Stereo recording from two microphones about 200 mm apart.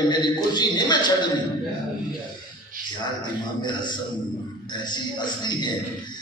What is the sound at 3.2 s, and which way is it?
A man's voice, 20° left (ahead or behind).